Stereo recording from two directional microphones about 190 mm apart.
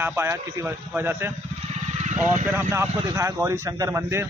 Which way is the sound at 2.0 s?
35° right (ahead or behind).